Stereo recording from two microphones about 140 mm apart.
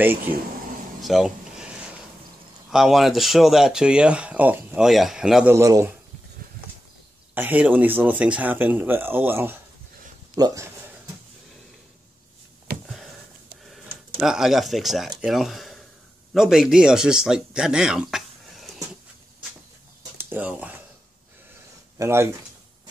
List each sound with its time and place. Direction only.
1.0 s a sound: centre (ahead or behind)
2.7 s speech: centre (ahead or behind)
4.8 s speech: centre (ahead or behind)
5.5 s a man's voice: 20° right (ahead or behind)
7.3 s a man's voice: 10° right (ahead or behind)
12.8 s a sound: centre (ahead or behind)
14.2 s speech: 5° right (ahead or behind)
20.2 s a sound: 10° right (ahead or behind)
21.9 s speech: 20° right (ahead or behind)